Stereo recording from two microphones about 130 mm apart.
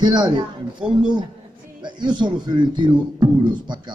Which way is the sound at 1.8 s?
35° right (ahead or behind).